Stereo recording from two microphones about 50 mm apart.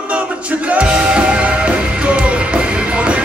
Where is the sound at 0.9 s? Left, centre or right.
Centre.